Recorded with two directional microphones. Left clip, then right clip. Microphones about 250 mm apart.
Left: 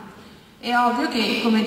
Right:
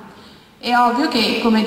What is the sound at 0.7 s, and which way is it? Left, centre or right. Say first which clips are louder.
Speech: right 4 dB; centre.